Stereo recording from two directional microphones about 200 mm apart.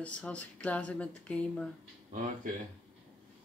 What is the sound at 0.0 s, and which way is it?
Speech, 5° left (ahead or behind).